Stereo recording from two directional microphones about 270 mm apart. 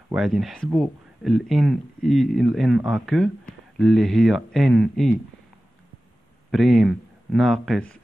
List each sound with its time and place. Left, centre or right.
0.1 s speech: centre
6.5 s speech: centre